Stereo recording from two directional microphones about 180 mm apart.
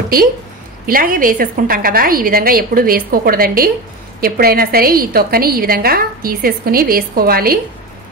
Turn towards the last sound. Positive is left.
turn(degrees=-55)  # may be behind; listen again after turning